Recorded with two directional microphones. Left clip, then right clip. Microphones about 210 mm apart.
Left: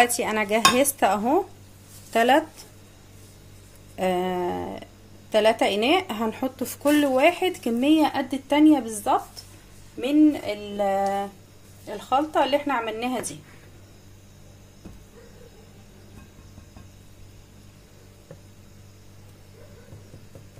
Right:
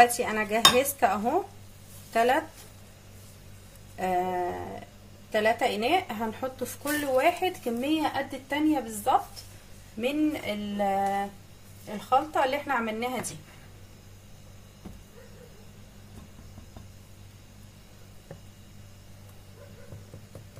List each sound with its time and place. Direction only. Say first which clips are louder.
0.1 s dishes: left 4 dB; 40° left (ahead or behind)
4.0 s dishes: left 3 dB; 40° left (ahead or behind)
5.3 s speech: left 5 dB; 45° left (ahead or behind)
9.9 s dishes: left 8 dB; 40° left (ahead or behind)